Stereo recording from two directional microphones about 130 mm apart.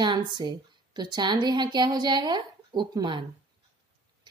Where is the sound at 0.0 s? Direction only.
35° right (ahead or behind).